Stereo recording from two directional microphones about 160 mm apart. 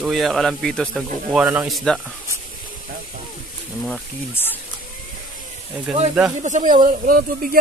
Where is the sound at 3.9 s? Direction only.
10° left (ahead or behind).